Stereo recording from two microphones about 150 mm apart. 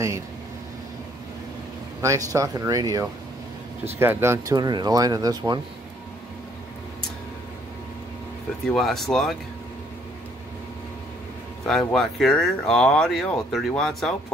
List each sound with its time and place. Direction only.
2.0 s speech: 20° right (ahead or behind)
8.6 s speech: centre (ahead or behind)
11.6 s speech: 5° left (ahead or behind)